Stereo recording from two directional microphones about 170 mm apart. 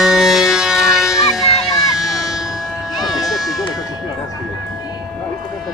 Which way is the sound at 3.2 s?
Centre (ahead or behind).